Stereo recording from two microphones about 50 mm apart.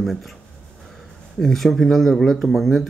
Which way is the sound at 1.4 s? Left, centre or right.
Centre.